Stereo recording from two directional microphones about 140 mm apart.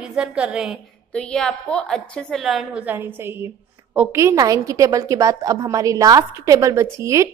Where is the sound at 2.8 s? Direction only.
15° right (ahead or behind).